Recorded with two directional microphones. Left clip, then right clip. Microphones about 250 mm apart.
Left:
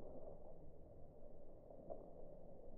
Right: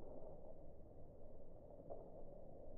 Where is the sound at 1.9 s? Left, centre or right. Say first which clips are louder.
Left 1 dB; left.